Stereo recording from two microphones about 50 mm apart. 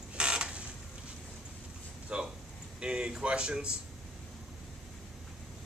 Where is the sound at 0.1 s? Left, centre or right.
Centre.